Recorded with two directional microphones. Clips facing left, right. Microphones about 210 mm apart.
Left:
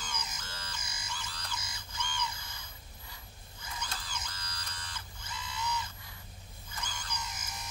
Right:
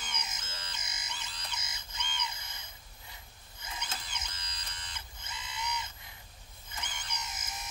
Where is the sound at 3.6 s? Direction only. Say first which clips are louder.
Even; 20° right (ahead or behind).